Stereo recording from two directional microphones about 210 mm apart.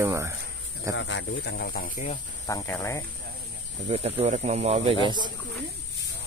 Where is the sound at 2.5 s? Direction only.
15° left (ahead or behind).